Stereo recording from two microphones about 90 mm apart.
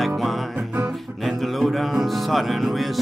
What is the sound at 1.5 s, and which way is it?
Music, centre (ahead or behind).